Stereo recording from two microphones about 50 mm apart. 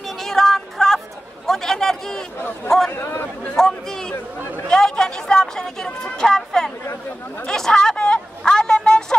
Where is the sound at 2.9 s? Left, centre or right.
Left.